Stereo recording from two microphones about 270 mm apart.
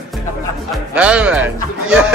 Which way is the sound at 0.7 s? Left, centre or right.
Centre.